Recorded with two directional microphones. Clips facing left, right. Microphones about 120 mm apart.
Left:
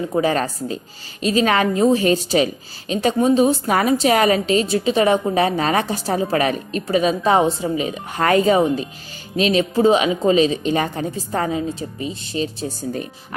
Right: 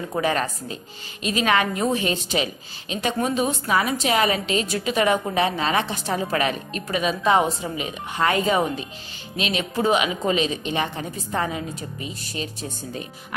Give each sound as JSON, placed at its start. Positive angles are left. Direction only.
{"t": 0.2, "sound": "a woman's voice", "side_deg": 35}
{"t": 2.0, "sound": "a woman's voice", "side_deg": 40}
{"t": 3.6, "sound": "a woman's voice", "side_deg": 40}